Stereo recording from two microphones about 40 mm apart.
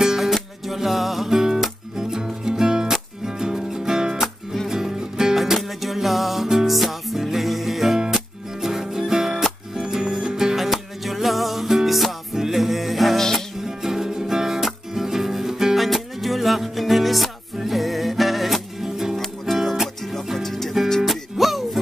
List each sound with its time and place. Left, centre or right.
0.0 s music: centre
13.7 s music: centre
20.0 s music: centre
21.0 s music: centre